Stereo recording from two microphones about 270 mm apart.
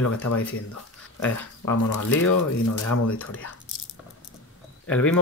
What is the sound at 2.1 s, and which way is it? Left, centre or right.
Speech, left.